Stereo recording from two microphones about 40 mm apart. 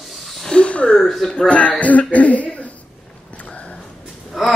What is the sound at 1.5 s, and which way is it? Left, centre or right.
Throat clearing, left.